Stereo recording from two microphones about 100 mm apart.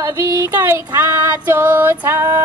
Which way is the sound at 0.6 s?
25° right (ahead or behind).